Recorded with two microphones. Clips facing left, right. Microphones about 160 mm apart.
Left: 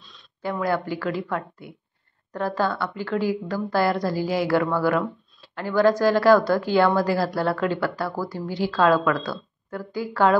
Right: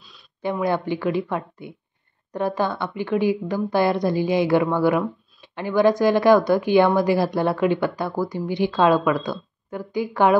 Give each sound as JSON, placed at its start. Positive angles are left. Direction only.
{"t": 0.4, "sound": "speech", "side_deg": -20}